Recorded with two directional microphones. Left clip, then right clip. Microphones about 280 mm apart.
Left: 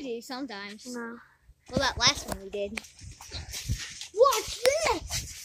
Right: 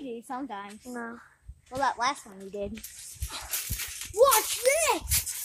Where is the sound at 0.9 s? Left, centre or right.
Centre.